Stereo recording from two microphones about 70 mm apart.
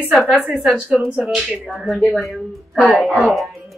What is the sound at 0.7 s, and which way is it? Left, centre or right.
Speech, centre.